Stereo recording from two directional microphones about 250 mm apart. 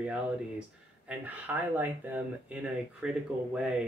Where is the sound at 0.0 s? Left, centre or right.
Centre.